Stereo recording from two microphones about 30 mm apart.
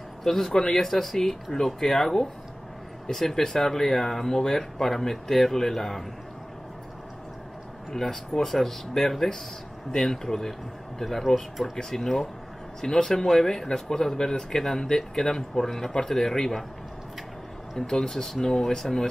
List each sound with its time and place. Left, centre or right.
0.2 s speech: centre
7.9 s speech: centre
17.7 s speech: left